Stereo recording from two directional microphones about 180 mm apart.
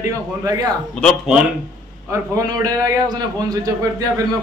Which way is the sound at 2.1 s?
20° right (ahead or behind).